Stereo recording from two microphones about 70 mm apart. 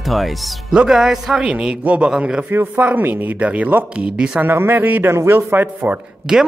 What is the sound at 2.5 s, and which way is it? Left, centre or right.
Speech, right.